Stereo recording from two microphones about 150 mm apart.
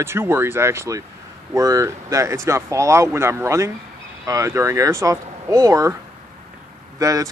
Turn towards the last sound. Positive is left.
turn(degrees=-20)  # may be behind; listen again after turning